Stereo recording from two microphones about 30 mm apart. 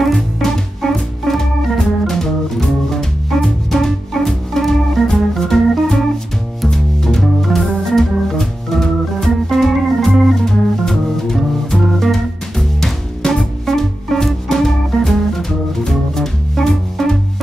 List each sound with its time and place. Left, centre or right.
0.8 s organ: centre
3.3 s music: centre
3.7 s organ: centre
6.7 s music: centre
7.2 s organ: centre
10.4 s music: centre